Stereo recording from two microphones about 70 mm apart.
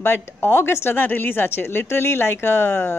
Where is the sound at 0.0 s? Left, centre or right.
Left.